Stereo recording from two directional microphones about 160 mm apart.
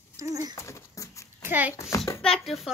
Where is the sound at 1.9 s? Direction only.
20° left (ahead or behind).